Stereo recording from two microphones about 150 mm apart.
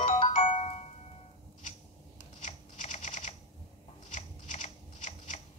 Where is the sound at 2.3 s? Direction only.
50° left (ahead or behind).